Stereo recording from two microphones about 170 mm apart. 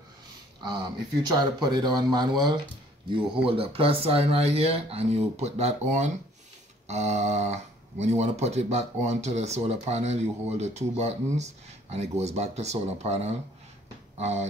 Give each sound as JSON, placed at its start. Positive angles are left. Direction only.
{"t": 1.2, "sound": "speech", "side_deg": -25}